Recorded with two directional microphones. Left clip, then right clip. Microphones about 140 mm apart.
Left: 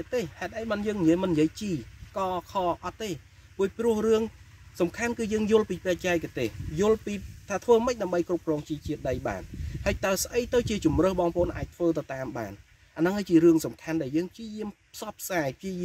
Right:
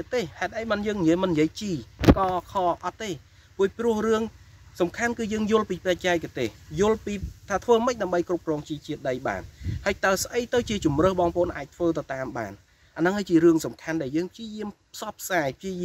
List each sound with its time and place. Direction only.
0.1 s speech: 20° left (ahead or behind)